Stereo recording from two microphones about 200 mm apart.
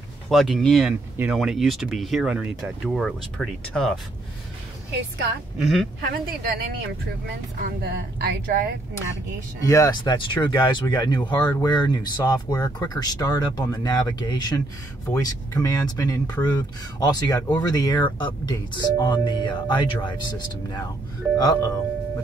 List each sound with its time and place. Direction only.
0.3 s speech: centre (ahead or behind)
5.6 s speech: centre (ahead or behind)
6.4 s speech: 50° right (ahead or behind)
9.6 s speech: 15° left (ahead or behind)
21.5 s speech: 15° left (ahead or behind)